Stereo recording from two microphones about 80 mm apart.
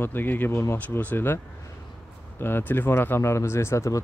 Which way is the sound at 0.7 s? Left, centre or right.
Left.